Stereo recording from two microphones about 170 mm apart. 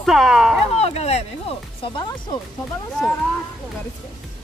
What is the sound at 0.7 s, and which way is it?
Speech, 40° left (ahead or behind).